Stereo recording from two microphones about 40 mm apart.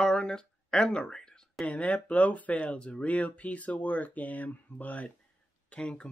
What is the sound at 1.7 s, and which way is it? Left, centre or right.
Speech, left.